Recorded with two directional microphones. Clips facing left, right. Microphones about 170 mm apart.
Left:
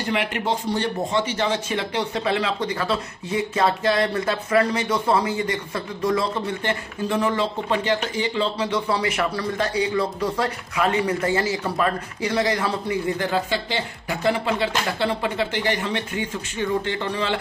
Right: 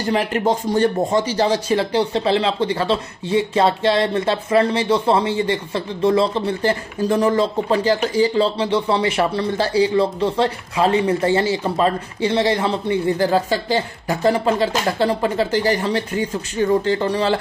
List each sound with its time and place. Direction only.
0.1 s speech: 40° right (ahead or behind)